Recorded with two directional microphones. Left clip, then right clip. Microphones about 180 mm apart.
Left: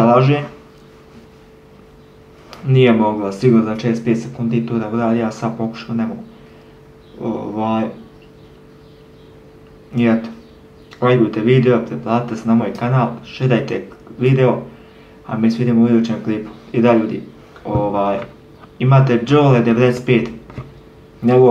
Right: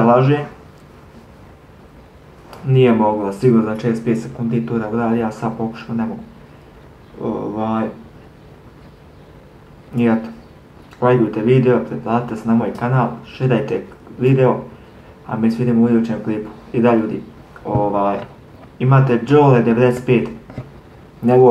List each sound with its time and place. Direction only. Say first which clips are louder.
0.0 s speech: left 1 dB; 5° left (ahead or behind)
2.7 s speech: even; 10° left (ahead or behind)
7.5 s speech: left 4 dB; centre (ahead or behind)
11.0 s speech: even; 10° left (ahead or behind)
19.0 s speech: right 3 dB; 10° left (ahead or behind)